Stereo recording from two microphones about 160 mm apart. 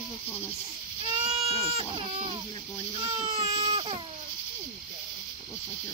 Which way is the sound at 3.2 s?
35° right (ahead or behind).